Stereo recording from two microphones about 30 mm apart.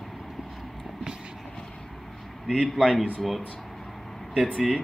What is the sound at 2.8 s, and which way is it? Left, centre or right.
Speech, centre.